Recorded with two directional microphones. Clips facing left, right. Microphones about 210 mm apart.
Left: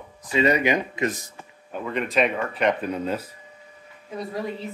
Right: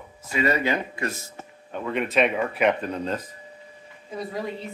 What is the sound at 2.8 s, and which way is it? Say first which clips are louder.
A man's voice: left 2 dB; 10° left (ahead or behind).